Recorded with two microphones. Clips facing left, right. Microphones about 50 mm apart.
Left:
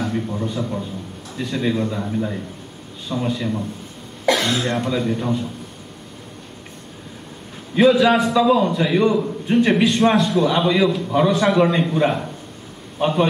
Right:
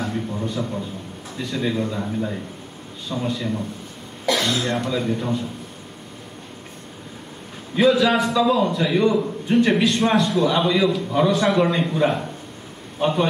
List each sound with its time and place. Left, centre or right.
0.0 s a sound: centre
0.6 s a man's voice: centre
4.3 s speech: left
4.6 s speech: centre
7.9 s a man's voice: centre